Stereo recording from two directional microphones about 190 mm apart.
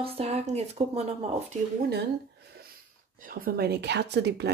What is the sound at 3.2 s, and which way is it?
Speech, 50° right (ahead or behind).